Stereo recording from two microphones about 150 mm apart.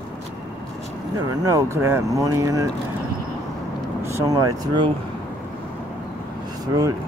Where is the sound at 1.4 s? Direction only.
20° right (ahead or behind).